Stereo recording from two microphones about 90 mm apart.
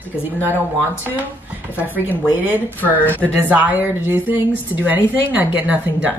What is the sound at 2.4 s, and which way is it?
A woman's voice, 20° right (ahead or behind).